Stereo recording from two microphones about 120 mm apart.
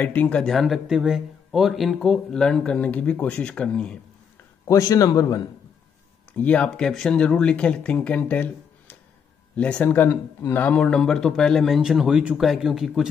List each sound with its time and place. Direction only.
0.0 s speech: 15° left (ahead or behind)
0.4 s speech: centre (ahead or behind)
4.6 s a man's voice: 25° left (ahead or behind)
6.3 s speech: 10° left (ahead or behind)